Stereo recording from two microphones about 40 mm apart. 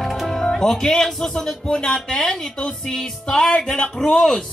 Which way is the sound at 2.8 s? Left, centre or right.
Centre.